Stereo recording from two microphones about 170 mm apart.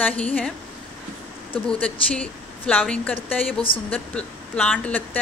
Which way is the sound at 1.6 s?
5° left (ahead or behind).